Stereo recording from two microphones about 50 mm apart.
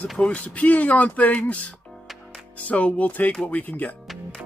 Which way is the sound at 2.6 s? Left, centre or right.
Left.